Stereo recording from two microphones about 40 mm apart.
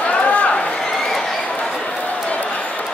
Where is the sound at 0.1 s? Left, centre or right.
Left.